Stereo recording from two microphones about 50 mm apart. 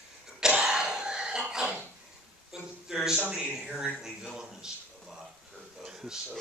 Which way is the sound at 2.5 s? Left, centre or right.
Centre.